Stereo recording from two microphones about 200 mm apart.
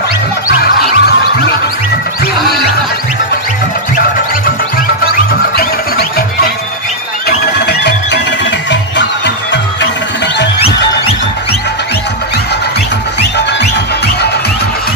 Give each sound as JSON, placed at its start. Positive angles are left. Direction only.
{"t": 0.6, "sound": "music", "side_deg": 50}
{"t": 5.6, "sound": "music", "side_deg": 50}
{"t": 7.2, "sound": "music", "side_deg": 55}